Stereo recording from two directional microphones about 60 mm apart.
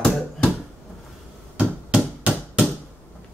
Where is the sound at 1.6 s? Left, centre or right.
Right.